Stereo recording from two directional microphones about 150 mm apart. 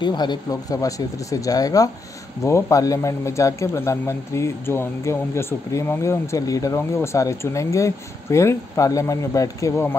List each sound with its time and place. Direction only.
0.0 s a man's voice: 30° left (ahead or behind)